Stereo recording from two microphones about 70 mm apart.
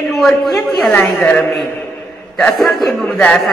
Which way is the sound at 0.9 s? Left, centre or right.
Left.